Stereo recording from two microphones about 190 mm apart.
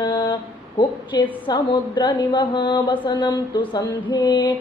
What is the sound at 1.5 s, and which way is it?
A woman's voice, 25° left (ahead or behind).